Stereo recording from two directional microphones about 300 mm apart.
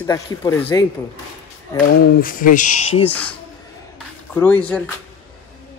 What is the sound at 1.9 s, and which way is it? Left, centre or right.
Speech, left.